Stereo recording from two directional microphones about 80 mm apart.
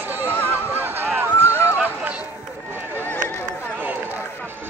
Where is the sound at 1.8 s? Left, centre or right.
Centre.